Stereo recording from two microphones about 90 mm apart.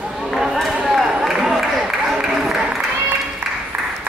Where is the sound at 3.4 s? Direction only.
25° right (ahead or behind).